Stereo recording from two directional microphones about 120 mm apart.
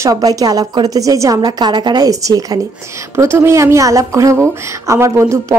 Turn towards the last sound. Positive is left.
turn(degrees=-25)  # may be behind; listen again after turning